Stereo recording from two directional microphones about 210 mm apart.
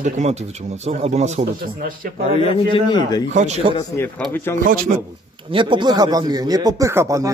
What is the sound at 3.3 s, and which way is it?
Speech, 30° right (ahead or behind).